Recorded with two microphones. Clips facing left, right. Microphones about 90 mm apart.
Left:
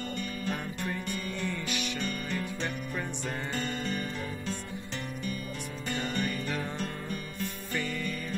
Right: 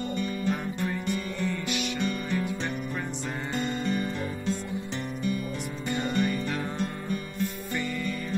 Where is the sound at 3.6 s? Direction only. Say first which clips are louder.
Right 5 dB; 15° right (ahead or behind).